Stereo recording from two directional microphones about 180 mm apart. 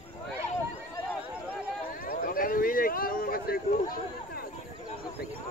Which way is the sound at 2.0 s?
55° left (ahead or behind).